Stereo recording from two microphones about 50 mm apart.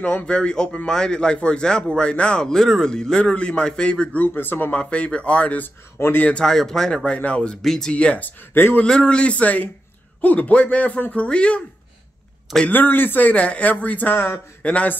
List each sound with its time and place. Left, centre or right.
0.0 s a man's voice: left
2.5 s a man's voice: centre
4.2 s speech: left
4.7 s a man's voice: left
6.3 s speech: centre
7.2 s a man's voice: left
7.6 s speech: centre
7.9 s a man's voice: left
8.8 s a man's voice: centre
12.6 s speech: left